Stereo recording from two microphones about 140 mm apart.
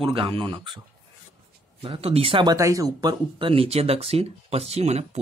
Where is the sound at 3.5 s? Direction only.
45° right (ahead or behind).